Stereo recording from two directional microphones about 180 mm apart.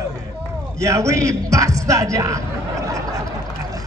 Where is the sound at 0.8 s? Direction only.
15° right (ahead or behind).